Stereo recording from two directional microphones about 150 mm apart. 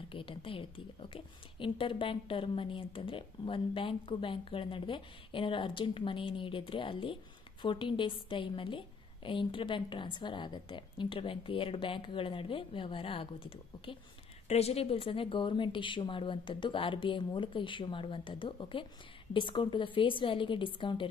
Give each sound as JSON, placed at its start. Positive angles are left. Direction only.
{"t": 0.1, "sound": "a woman's voice", "side_deg": 35}